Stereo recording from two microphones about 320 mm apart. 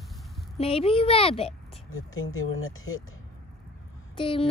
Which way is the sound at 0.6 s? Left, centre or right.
Centre.